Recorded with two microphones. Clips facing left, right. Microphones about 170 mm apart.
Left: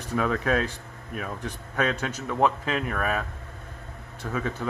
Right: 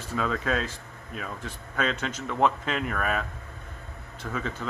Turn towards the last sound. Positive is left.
turn(degrees=15)  # may be behind; listen again after turning